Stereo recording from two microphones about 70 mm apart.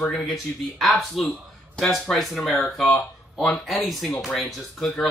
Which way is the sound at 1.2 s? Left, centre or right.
Centre.